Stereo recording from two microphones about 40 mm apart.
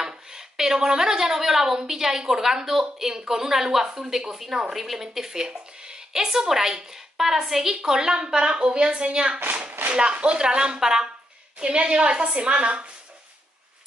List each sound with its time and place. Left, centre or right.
0.3 s a woman's voice: centre